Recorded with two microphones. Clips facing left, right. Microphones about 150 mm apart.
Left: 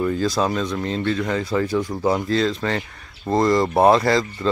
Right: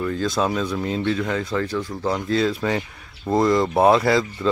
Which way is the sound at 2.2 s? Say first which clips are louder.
Even; 5° right (ahead or behind).